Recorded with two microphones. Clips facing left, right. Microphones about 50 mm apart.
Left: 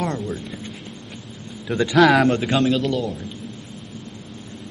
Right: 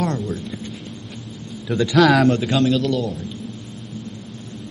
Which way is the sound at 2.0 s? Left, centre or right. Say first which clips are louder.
Even; centre.